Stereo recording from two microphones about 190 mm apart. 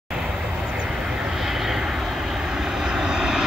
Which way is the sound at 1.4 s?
Centre (ahead or behind).